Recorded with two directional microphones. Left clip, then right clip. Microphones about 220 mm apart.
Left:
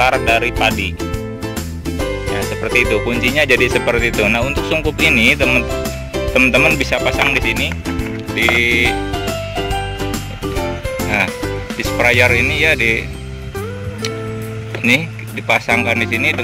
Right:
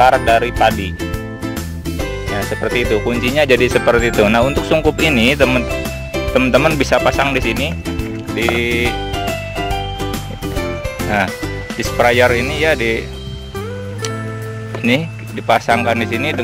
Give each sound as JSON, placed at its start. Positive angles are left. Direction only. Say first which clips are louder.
{"t": 0.0, "sound": "speech", "louder": "right 3 dB", "side_deg": -5}
{"t": 2.3, "sound": "speech", "louder": "left 2 dB", "side_deg": -5}
{"t": 8.4, "sound": "speech", "louder": "left 3 dB", "side_deg": -5}
{"t": 11.1, "sound": "speech", "louder": "even", "side_deg": -10}
{"t": 14.8, "sound": "speech", "louder": "left 2 dB", "side_deg": -10}